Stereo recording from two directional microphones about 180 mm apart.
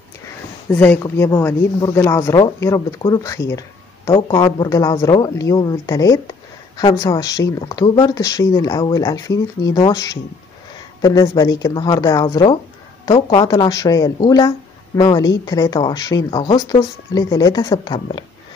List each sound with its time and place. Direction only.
0.7 s speech: 10° left (ahead or behind); by 18.2 s 25° left (ahead or behind)